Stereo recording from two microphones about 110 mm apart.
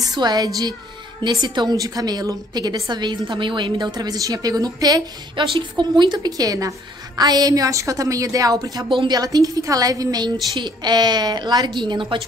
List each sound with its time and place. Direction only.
0.1 s a woman's voice: 40° right (ahead or behind)
5.3 s a woman's voice: 50° right (ahead or behind)